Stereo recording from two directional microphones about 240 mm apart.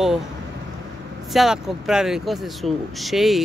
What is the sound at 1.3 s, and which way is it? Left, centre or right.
Speech, centre.